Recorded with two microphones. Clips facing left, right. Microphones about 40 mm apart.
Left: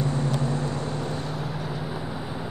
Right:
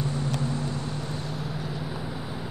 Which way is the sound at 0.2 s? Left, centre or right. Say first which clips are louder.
Left 3 dB; left.